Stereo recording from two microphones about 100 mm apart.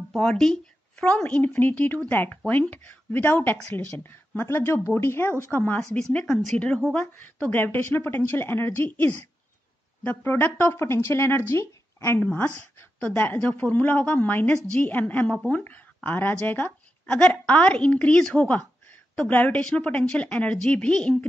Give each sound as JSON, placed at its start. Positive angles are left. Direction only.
{"t": 0.1, "sound": "a woman's voice", "side_deg": 5}
{"t": 12.2, "sound": "a woman's voice", "side_deg": 20}